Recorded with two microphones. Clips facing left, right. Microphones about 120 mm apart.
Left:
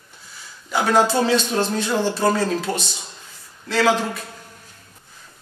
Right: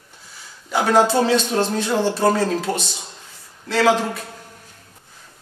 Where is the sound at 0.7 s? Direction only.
45° right (ahead or behind).